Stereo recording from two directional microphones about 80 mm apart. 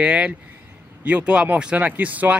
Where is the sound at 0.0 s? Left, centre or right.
Centre.